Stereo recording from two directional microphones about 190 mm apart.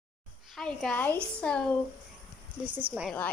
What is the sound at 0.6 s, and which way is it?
A woman's voice, 5° left (ahead or behind).